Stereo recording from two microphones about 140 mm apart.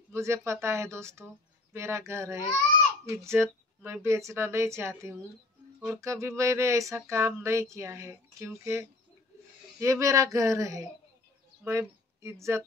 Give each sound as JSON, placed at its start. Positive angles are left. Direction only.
{"t": 0.1, "sound": "speech", "side_deg": -20}